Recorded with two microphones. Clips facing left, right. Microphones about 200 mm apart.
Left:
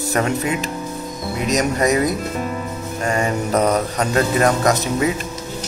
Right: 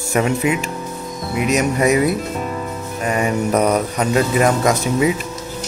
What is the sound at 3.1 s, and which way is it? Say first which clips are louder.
A man's voice: right 2 dB; 10° right (ahead or behind).